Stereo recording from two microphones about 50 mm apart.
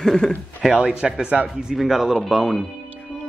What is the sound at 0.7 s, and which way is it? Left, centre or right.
Speech, centre.